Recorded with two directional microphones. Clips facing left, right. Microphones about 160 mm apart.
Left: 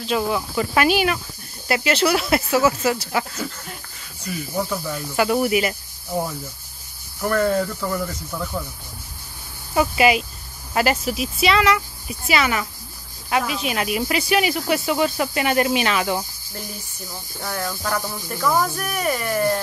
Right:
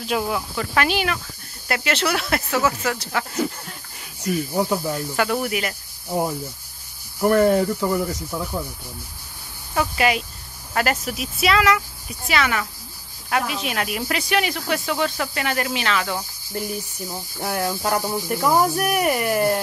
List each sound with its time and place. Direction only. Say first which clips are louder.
0.0 s speech: left 2 dB; 10° right (ahead or behind)
0.6 s speech: left 4 dB; 10° left (ahead or behind)
4.2 s speech: right 4 dB; 20° right (ahead or behind)
5.1 s speech: left 6 dB; 5° left (ahead or behind)
7.2 s speech: right 4 dB; 20° right (ahead or behind)
9.8 s speech: left 3 dB; 10° left (ahead or behind)
17.4 s speech: right 3 dB; 20° right (ahead or behind)